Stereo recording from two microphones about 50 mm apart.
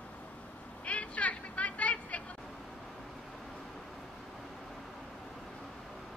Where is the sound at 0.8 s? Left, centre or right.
Left.